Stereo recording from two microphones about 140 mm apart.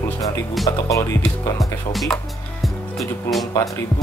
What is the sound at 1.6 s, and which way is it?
Speech, centre (ahead or behind).